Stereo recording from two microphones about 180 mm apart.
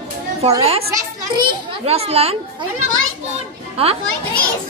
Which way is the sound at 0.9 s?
25° right (ahead or behind).